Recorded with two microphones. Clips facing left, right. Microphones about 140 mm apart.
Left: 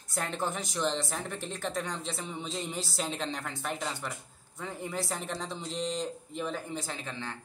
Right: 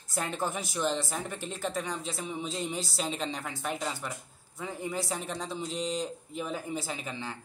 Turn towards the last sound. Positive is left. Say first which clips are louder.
# right 1 dB
turn(degrees=-10)  # may be behind; listen again after turning